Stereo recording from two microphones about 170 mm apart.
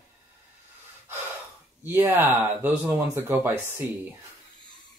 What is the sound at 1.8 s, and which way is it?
Speech, 10° right (ahead or behind).